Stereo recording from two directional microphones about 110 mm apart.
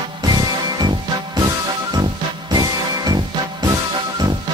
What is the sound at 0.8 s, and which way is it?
Music, 40° right (ahead or behind).